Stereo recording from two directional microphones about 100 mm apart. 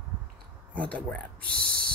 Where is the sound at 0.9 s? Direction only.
15° left (ahead or behind).